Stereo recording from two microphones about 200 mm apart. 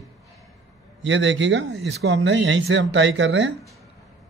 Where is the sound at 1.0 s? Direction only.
65° right (ahead or behind).